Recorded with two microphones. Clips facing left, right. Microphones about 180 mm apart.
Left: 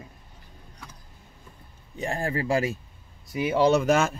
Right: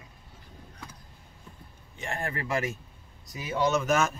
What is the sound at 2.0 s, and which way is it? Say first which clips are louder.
Speech: left 6 dB; 30° left (ahead or behind).